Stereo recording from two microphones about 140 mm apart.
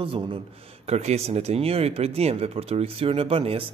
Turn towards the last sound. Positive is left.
turn(degrees=-40)  # may be behind; listen again after turning